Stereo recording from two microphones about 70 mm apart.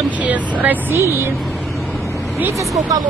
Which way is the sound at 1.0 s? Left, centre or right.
Right.